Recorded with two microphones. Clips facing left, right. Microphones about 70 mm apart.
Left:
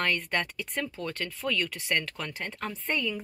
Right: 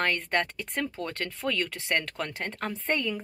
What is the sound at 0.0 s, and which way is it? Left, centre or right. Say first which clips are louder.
Speech: right 2 dB; right.